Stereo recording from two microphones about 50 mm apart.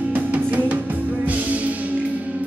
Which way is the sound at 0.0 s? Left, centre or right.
Right.